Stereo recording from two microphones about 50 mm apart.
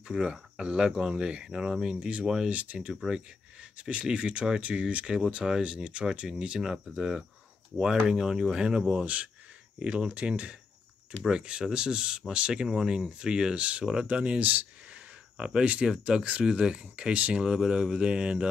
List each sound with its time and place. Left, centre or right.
0.1 s speech: centre
2.2 s speech: centre
2.5 s speech: right
3.9 s speech: right
9.0 s speech: right
9.8 s speech: centre